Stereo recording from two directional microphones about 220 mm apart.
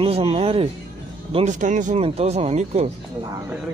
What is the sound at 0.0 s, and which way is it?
Speech, 25° right (ahead or behind).